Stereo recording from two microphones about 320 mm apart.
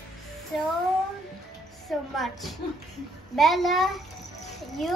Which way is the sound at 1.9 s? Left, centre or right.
Centre.